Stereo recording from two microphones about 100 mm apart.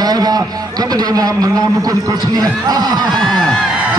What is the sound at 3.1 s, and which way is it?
Speech, centre (ahead or behind).